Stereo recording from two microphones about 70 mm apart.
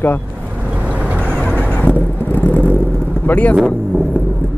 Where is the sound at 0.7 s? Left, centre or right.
Right.